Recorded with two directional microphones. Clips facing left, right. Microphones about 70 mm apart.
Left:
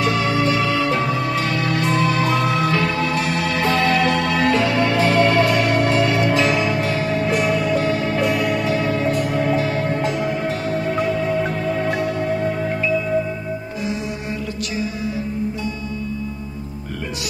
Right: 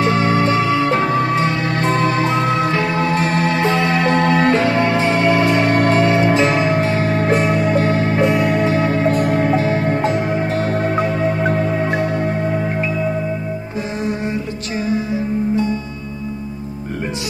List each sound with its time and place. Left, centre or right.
0.0 s music: right
11.5 s music: right